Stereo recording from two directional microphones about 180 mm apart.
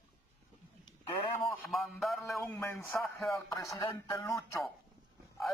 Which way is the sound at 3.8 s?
20° left (ahead or behind).